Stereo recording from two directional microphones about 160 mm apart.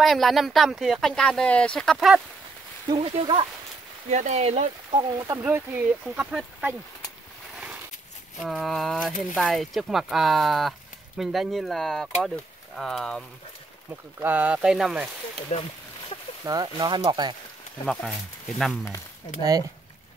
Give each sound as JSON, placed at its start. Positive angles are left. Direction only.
{"t": 0.0, "sound": "speech", "side_deg": 0}
{"t": 2.9, "sound": "speech", "side_deg": -35}
{"t": 4.1, "sound": "speech", "side_deg": -45}
{"t": 5.1, "sound": "speech", "side_deg": -15}
{"t": 8.4, "sound": "speech", "side_deg": 0}
{"t": 14.2, "sound": "speech", "side_deg": -10}
{"t": 15.5, "sound": "speech", "side_deg": 45}
{"t": 16.4, "sound": "speech", "side_deg": -25}